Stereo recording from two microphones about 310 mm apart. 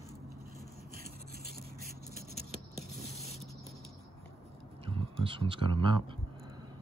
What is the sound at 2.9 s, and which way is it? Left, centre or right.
Spray, centre.